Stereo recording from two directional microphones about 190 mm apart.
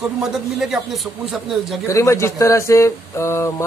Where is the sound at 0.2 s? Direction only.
Centre (ahead or behind).